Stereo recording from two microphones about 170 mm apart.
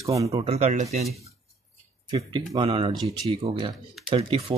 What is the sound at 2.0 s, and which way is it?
Speech, 25° right (ahead or behind).